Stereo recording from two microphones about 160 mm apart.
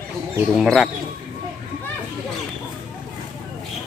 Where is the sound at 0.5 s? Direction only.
Centre (ahead or behind).